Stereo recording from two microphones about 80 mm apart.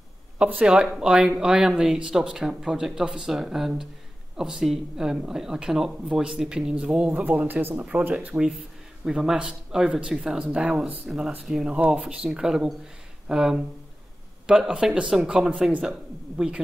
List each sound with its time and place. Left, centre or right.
0.4 s speech: centre